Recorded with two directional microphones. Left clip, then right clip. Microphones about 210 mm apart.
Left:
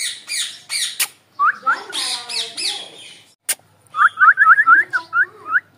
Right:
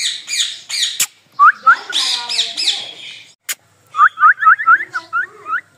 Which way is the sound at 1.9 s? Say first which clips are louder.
Right 6 dB; 35° right (ahead or behind).